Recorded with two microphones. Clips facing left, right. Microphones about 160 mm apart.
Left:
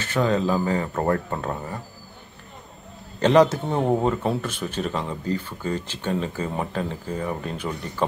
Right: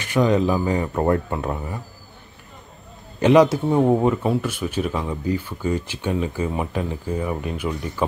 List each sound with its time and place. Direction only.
0.0 s speech: 15° right (ahead or behind)
3.2 s speech: 10° right (ahead or behind)